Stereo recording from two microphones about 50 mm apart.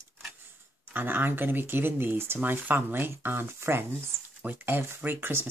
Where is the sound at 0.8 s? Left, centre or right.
Right.